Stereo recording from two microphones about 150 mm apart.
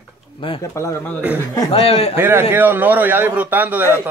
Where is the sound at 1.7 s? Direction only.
40° left (ahead or behind).